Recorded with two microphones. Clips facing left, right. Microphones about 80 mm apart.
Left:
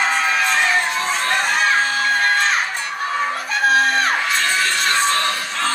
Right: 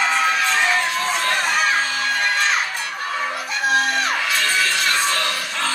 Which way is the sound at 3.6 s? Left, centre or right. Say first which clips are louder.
Left 3 dB; left.